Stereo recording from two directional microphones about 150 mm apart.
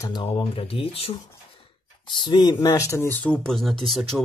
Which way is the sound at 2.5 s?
20° left (ahead or behind).